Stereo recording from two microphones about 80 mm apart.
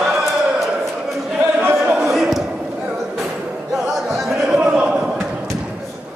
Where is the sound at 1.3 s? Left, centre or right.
Right.